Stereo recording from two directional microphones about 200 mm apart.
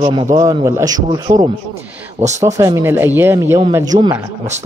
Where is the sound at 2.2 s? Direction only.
35° right (ahead or behind).